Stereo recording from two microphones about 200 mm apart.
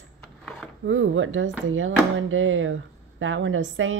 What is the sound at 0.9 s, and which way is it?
Speech, 80° right.